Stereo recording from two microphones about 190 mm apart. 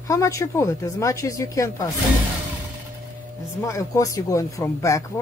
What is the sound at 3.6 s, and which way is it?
Speech, 15° left (ahead or behind).